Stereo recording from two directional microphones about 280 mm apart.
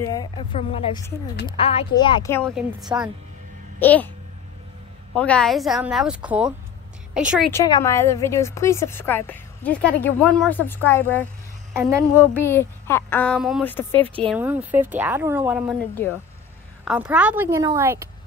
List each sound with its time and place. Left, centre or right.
0.0 s a woman's voice: centre
2.5 s a woman's voice: centre
5.1 s speech: centre
7.5 s a woman's voice: centre
11.7 s a woman's voice: centre
12.4 s a woman's voice: centre
13.9 s a woman's voice: centre
14.2 s speech: centre
16.8 s a woman's voice: centre